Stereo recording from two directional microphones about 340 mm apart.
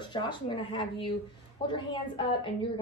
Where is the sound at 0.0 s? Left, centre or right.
Centre.